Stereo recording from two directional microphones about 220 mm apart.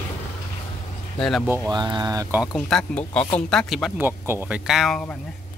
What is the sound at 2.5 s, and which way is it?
Speech, 5° left (ahead or behind).